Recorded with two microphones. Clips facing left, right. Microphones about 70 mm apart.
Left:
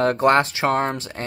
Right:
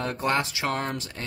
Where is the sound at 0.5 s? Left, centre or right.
Left.